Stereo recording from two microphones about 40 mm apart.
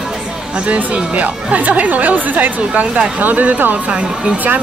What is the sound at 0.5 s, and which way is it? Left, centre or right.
Speech, right.